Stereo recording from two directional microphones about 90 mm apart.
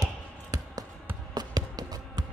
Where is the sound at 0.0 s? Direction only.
45° right (ahead or behind).